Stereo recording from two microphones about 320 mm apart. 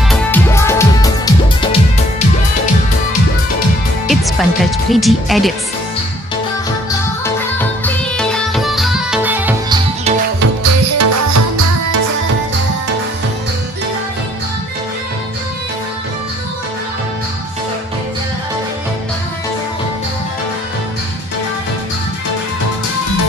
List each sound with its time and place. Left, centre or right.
0.1 s music: centre
4.1 s speech: centre
7.2 s music: centre
10.4 s music: right